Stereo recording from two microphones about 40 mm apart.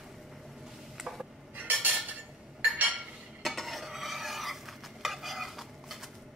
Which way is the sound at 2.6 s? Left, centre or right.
Right.